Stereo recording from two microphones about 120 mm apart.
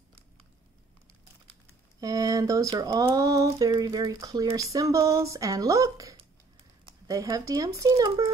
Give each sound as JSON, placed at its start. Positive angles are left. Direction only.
{"t": 2.0, "sound": "speech", "side_deg": -30}